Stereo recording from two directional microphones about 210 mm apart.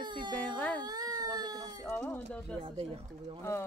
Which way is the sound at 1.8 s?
10° left (ahead or behind).